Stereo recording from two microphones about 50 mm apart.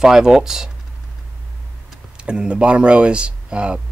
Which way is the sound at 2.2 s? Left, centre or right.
Right.